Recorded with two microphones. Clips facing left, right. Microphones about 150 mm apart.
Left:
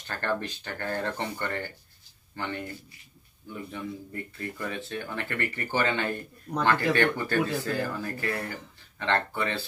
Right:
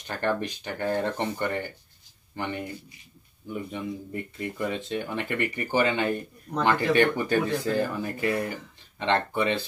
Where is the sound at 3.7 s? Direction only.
20° right (ahead or behind).